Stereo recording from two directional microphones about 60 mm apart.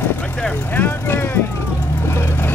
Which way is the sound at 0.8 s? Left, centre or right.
Left.